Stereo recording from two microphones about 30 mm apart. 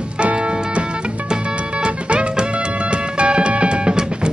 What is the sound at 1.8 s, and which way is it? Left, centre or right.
Music, right.